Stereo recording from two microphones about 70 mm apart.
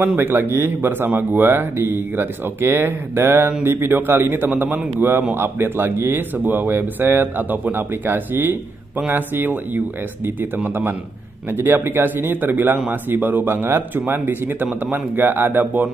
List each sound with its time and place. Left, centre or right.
0.2 s speech: right